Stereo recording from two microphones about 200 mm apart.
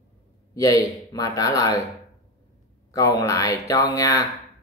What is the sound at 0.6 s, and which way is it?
Speech, 15° left (ahead or behind).